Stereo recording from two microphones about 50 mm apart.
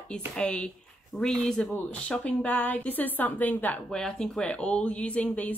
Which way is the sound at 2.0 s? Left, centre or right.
Left.